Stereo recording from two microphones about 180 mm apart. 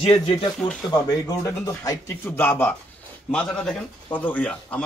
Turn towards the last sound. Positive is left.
turn(degrees=5)  # may be behind; listen again after turning